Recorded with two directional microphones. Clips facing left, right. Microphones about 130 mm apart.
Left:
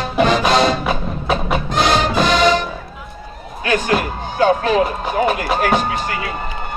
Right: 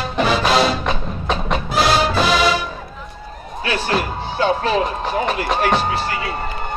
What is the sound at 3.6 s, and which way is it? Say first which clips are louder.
Music: left 3 dB; 35° right (ahead or behind).